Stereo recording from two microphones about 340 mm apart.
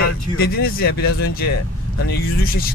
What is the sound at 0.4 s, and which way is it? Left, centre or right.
Speech, left.